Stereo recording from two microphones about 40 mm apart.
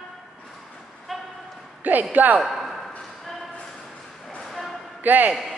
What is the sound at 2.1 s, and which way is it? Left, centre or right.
Speech, right.